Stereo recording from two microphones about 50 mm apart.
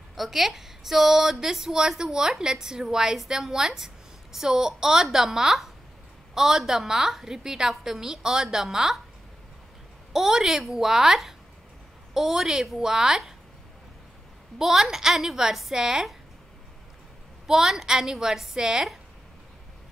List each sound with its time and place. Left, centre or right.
0.1 s a woman's voice: centre
10.1 s a woman's voice: centre
14.6 s a woman's voice: centre
17.5 s a woman's voice: centre